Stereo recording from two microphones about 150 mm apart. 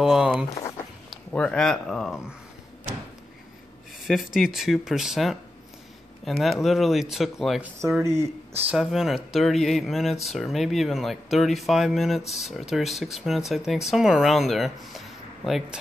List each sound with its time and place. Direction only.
0.0 s speech: 5° right (ahead or behind)
4.1 s speech: centre (ahead or behind)
8.0 s speech: 20° right (ahead or behind)
8.6 s speech: centre (ahead or behind)